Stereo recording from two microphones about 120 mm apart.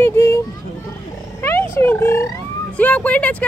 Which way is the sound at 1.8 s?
20° left (ahead or behind).